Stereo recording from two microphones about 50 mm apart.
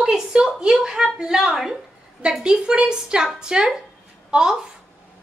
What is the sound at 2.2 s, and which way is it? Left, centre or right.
A woman's voice, right.